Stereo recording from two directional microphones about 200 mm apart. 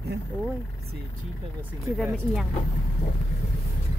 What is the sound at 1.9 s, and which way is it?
Speech, centre (ahead or behind).